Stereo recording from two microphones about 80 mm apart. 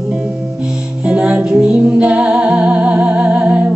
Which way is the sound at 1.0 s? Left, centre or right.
Centre.